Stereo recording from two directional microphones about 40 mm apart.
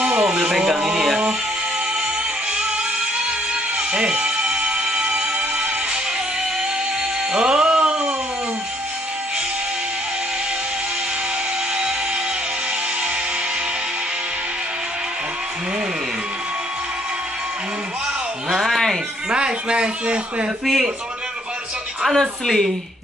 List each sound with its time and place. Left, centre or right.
0.0 s music: centre
3.7 s music: right
7.3 s music: right
18.5 s a sound: centre
19.3 s a sound: right
22.1 s a woman's voice: centre